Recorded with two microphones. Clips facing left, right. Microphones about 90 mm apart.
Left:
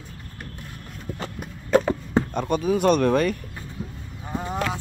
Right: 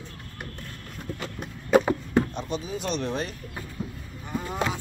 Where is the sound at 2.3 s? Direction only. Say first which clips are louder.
Left 9 dB; 55° left (ahead or behind).